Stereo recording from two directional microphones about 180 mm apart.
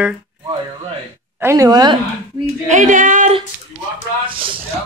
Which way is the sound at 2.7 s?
45° right (ahead or behind).